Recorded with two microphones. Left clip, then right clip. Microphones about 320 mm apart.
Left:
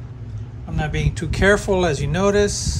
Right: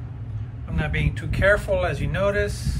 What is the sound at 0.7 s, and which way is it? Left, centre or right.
Speech, centre.